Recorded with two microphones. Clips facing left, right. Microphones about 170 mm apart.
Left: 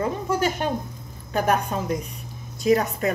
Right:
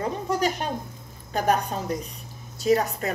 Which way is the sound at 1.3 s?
35° right (ahead or behind).